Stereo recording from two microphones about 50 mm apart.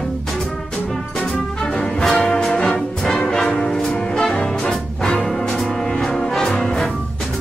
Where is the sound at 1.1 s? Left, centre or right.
Centre.